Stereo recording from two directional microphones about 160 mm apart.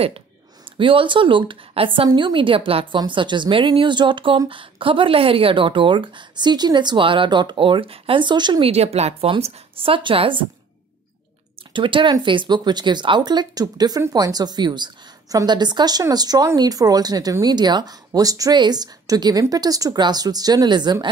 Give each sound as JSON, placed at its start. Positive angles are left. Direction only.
{"t": 0.7, "sound": "a woman's voice", "side_deg": -30}
{"t": 11.7, "sound": "speech", "side_deg": -30}